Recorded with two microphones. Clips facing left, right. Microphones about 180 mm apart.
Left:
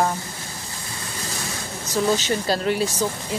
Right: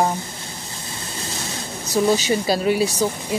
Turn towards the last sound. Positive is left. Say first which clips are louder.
# right 3 dB
turn(degrees=-10)  # may be behind; listen again after turning